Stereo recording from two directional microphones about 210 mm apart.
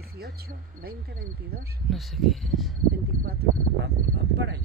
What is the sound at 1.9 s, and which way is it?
Speech, centre (ahead or behind).